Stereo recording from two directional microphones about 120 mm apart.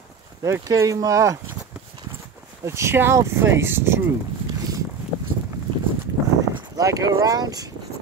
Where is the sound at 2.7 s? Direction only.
25° right (ahead or behind).